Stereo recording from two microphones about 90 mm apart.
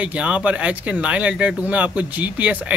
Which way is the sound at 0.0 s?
15° right (ahead or behind).